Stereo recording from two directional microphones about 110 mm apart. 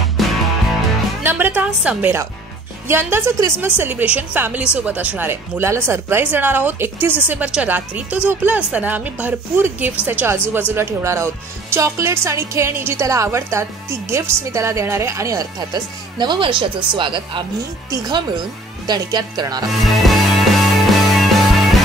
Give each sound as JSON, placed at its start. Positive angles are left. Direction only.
{"t": 0.2, "sound": "music", "side_deg": 0}
{"t": 1.2, "sound": "a woman's voice", "side_deg": -20}
{"t": 17.8, "sound": "speech", "side_deg": -35}
{"t": 19.7, "sound": "music", "side_deg": 0}